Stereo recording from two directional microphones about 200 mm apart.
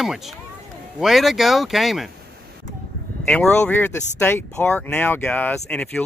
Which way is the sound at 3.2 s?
5° left (ahead or behind).